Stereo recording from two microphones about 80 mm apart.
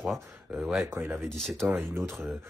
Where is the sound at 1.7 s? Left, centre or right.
Right.